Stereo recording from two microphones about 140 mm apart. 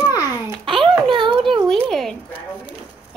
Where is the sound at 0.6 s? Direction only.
40° right (ahead or behind).